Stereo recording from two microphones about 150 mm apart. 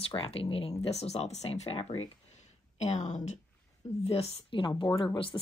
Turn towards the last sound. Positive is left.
turn(degrees=30)  # may be behind; listen again after turning